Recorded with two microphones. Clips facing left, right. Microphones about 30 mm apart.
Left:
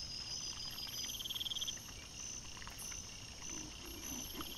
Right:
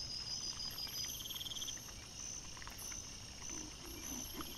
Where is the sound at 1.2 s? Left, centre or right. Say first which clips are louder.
Left 4 dB; centre.